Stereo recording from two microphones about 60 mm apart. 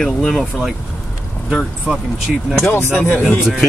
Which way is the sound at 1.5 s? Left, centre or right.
Centre.